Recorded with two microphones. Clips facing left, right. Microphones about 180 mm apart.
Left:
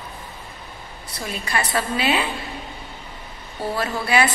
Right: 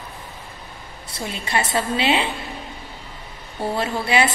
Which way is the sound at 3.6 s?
25° right (ahead or behind).